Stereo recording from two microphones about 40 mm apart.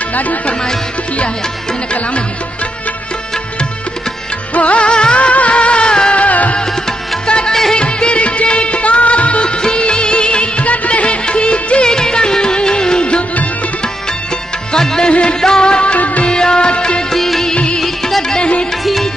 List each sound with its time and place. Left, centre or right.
0.1 s music: left
4.6 s music: left
6.1 s music: left
7.2 s music: left
14.7 s music: centre; by 16.3 s left
16.3 s music: left
17.1 s music: centre
18.3 s music: left